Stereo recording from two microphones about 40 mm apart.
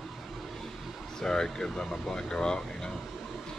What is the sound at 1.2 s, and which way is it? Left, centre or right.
Speech, centre.